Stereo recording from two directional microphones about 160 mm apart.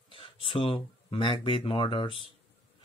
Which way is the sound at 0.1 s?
35° left (ahead or behind).